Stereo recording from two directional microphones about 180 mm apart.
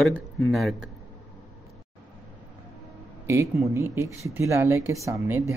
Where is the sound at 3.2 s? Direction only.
15° right (ahead or behind).